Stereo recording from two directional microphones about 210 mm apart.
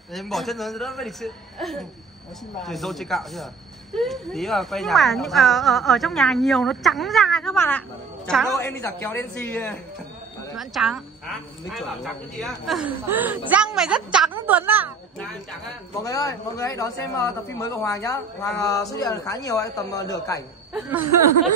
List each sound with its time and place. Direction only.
0.1 s a man's voice: centre (ahead or behind)
16.0 s a man's voice: 15° left (ahead or behind)